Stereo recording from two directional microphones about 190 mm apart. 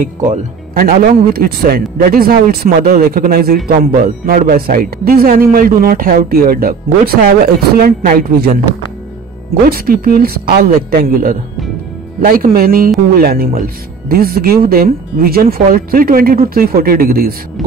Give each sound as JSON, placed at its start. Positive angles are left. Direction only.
{"t": 0.0, "sound": "speech", "side_deg": -45}